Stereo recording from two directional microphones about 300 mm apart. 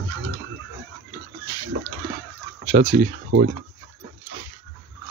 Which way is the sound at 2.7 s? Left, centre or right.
Right.